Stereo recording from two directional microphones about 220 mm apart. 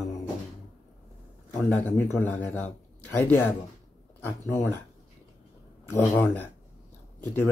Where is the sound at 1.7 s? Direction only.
10° left (ahead or behind).